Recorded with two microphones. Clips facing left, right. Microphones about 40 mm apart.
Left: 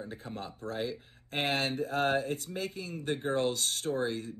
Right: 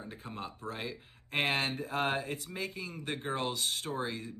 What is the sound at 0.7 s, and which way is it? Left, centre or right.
Speech, right.